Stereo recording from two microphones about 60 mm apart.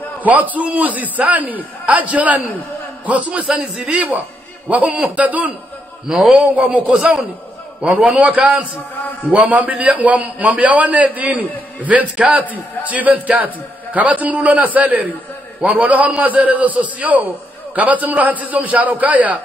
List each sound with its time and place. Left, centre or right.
0.2 s a man's voice: right
6.0 s a man's voice: centre
6.4 s a man's voice: right
6.9 s a man's voice: centre
7.8 s a man's voice: right